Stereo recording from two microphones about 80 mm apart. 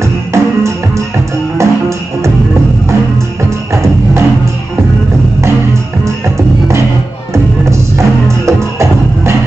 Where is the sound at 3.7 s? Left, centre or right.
Right.